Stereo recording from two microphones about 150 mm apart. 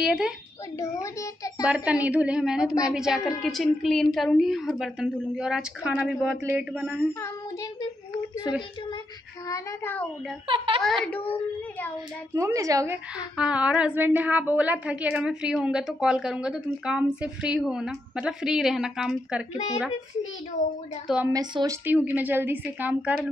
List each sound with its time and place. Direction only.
0.0 s a woman's voice: 5° right (ahead or behind)
0.7 s a child's voice: 20° left (ahead or behind)
1.7 s a woman's voice: 10° right (ahead or behind)
9.5 s a child's voice: 20° left (ahead or behind)
10.4 s a child's voice: 35° right (ahead or behind)
10.8 s a child's voice: centre (ahead or behind)
12.4 s a woman's voice: 20° right (ahead or behind); by 19.4 s 5° right (ahead or behind)
19.5 s a woman's voice: 45° left (ahead or behind)
21.3 s speech: 25° right (ahead or behind)
21.8 s a woman's voice: 10° right (ahead or behind)